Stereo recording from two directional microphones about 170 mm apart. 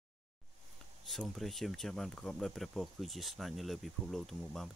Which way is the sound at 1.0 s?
Centre (ahead or behind).